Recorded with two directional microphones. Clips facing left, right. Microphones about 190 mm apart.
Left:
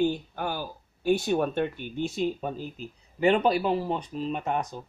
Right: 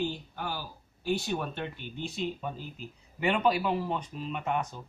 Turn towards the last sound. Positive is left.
turn(degrees=40)  # may be behind; listen again after turning